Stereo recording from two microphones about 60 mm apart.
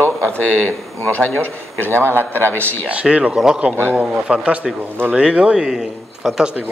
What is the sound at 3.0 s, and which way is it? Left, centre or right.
Speech, centre.